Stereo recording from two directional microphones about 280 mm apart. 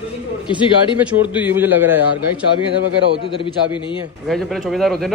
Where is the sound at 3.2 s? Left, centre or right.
Centre.